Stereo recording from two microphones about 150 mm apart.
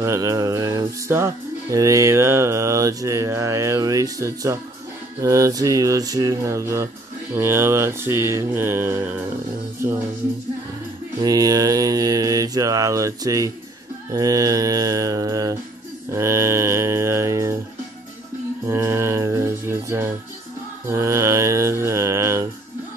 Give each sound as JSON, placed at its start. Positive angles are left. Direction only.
{"t": 0.0, "sound": "speech", "side_deg": -20}
{"t": 7.3, "sound": "mantra", "side_deg": -15}
{"t": 11.1, "sound": "speech", "side_deg": -25}
{"t": 16.1, "sound": "mantra", "side_deg": -20}
{"t": 18.7, "sound": "mantra", "side_deg": -15}